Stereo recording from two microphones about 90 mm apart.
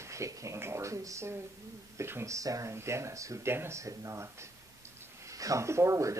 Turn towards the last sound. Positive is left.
turn(degrees=-35)  # may be behind; listen again after turning